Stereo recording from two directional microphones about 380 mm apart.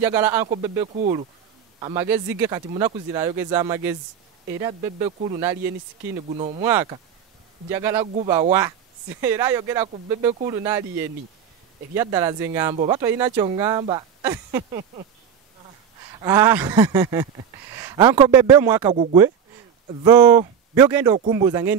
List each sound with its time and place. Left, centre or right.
0.0 s speech: centre
6.6 s speech: centre
16.2 s speech: centre